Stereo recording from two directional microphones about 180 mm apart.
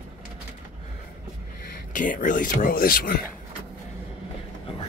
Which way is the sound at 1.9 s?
45° left (ahead or behind).